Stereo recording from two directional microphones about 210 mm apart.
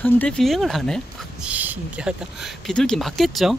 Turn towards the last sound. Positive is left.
turn(degrees=0)  # may be behind; listen again after turning